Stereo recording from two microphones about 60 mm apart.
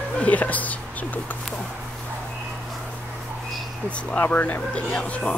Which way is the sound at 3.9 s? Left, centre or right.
Left.